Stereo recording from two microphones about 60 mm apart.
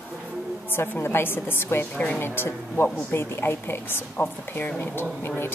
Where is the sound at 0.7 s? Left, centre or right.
Left.